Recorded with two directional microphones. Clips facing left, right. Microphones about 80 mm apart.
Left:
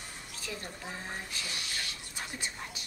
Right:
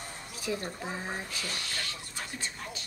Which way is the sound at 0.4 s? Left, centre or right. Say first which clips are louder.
Right 8 dB; centre.